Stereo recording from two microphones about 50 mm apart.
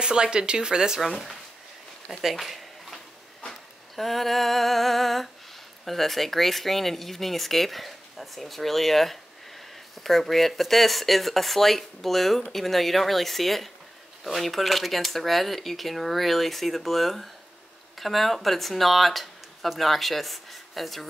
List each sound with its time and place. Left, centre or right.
0.0 s speech: centre
1.0 s speech: centre
2.0 s a sound: centre
5.9 s speech: centre